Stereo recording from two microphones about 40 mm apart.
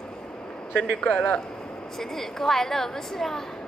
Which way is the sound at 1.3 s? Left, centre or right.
Centre.